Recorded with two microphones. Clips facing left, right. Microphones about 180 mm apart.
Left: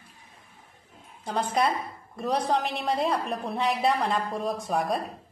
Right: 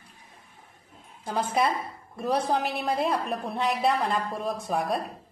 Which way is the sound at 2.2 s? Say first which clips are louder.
Even; 5° right (ahead or behind).